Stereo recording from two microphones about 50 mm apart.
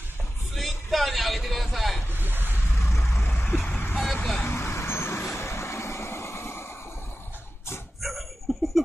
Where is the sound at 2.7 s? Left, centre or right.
Left.